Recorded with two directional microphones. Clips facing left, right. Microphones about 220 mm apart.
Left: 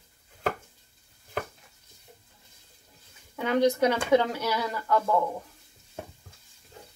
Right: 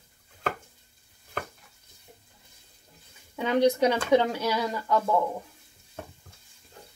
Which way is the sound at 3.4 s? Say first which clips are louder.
Right 1 dB; 15° right (ahead or behind).